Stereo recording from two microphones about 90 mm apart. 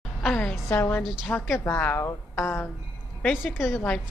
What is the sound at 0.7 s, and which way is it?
Speech, 25° left (ahead or behind).